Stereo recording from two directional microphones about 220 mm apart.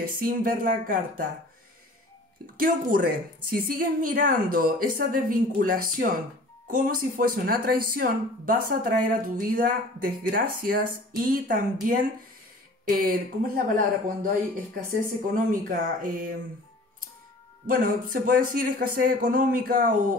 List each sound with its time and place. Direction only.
0.1 s speech: 40° right (ahead or behind)
2.6 s speech: 40° right (ahead or behind)
17.6 s speech: 40° right (ahead or behind)